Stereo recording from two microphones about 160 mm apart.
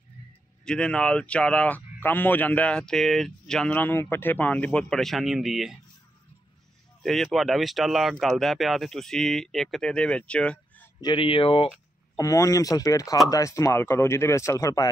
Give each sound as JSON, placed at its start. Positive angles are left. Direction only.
{"t": 0.7, "sound": "speech", "side_deg": 5}
{"t": 7.0, "sound": "speech", "side_deg": 0}
{"t": 11.0, "sound": "speech", "side_deg": 30}
{"t": 12.2, "sound": "speech", "side_deg": 20}